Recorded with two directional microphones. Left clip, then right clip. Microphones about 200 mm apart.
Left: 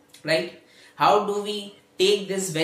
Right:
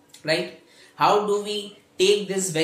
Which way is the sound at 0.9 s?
10° right (ahead or behind).